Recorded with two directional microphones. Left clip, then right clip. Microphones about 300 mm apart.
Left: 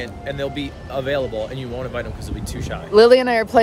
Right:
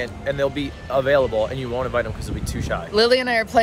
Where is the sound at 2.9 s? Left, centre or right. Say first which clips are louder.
Left 6 dB; centre.